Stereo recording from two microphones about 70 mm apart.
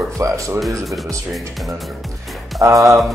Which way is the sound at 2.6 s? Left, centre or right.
Right.